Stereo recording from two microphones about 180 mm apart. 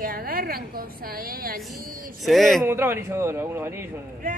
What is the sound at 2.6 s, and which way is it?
A woman's voice, 15° right (ahead or behind).